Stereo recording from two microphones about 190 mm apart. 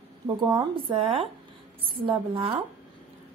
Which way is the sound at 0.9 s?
30° right (ahead or behind).